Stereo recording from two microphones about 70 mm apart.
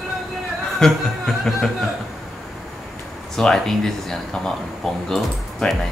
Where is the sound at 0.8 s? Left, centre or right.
Centre.